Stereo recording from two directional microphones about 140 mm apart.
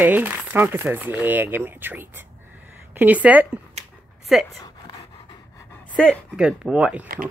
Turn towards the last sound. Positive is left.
turn(degrees=-90)